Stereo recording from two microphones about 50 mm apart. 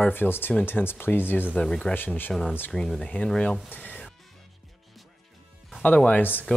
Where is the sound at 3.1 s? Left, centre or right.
Left.